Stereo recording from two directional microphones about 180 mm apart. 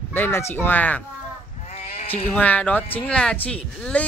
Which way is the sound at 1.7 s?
35° left (ahead or behind).